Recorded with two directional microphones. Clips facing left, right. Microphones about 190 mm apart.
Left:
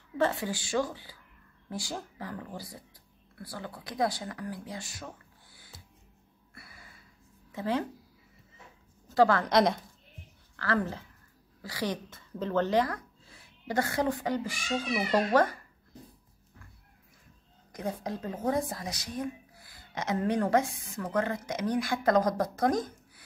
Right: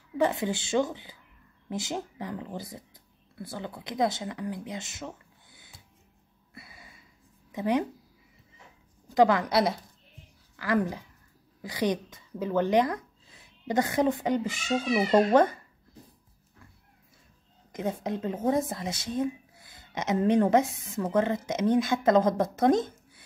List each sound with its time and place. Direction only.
0.2 s speech: 20° right (ahead or behind)
6.5 s a sound: 20° right (ahead or behind)
7.5 s a woman's voice: 15° right (ahead or behind)
9.1 s a woman's voice: 15° right (ahead or behind)
17.7 s speech: 20° right (ahead or behind)